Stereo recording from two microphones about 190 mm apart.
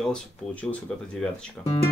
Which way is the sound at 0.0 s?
5° left (ahead or behind).